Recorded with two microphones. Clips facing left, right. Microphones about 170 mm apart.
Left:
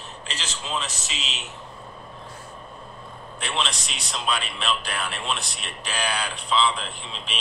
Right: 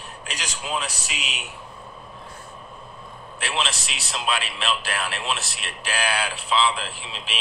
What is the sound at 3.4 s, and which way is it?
Speech, 5° right (ahead or behind).